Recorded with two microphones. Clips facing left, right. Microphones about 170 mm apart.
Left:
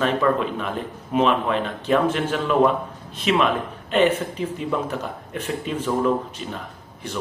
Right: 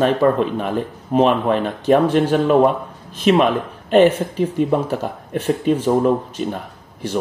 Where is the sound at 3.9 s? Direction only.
45° right (ahead or behind).